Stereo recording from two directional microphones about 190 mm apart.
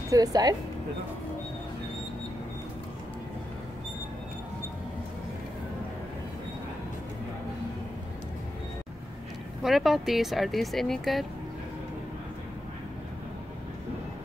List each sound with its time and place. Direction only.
0.1 s speech: 20° right (ahead or behind)
9.6 s speech: centre (ahead or behind)